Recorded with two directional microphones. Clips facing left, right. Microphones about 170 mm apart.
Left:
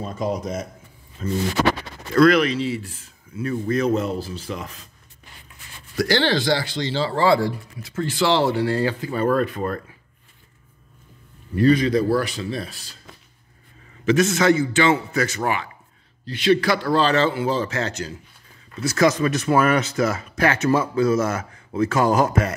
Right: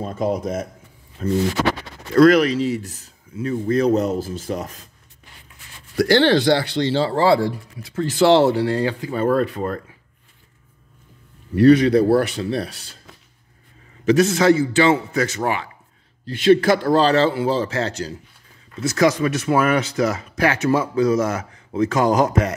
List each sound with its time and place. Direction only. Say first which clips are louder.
0.0 s speech: right 3 dB; 55° right (ahead or behind)
2.1 s speech: right 3 dB; 40° right (ahead or behind)
3.3 s a man's voice: right 3 dB; 25° right (ahead or behind); by 4.8 s 45° right (ahead or behind)
5.9 s speech: right 5 dB; 55° right (ahead or behind)
7.1 s a man's voice: left 2 dB; 30° right (ahead or behind)
8.5 s speech: right 2 dB; 20° right (ahead or behind)
11.5 s speech: right 5 dB; 70° right (ahead or behind)
14.0 s a man's voice: right 2 dB; 35° right (ahead or behind)
16.3 s a man's voice: right 4 dB; 50° right (ahead or behind); by 18.1 s 30° right (ahead or behind)
18.8 s speech: right 1 dB; 20° right (ahead or behind)